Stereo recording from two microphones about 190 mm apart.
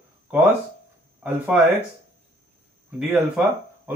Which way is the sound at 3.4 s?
5° right (ahead or behind).